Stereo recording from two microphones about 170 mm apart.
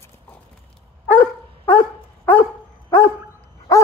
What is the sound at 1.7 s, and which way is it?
Dog, 10° left (ahead or behind).